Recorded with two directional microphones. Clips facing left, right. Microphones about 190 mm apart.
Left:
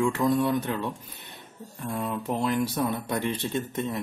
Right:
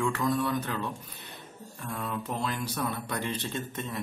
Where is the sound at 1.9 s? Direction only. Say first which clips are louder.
Left 5 dB; 25° left (ahead or behind).